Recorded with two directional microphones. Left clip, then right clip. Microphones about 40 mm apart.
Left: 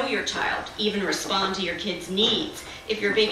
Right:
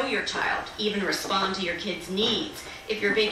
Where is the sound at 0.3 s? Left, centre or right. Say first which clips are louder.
Left 1 dB; centre.